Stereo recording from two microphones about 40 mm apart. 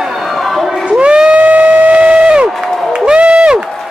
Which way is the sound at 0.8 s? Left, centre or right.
Right.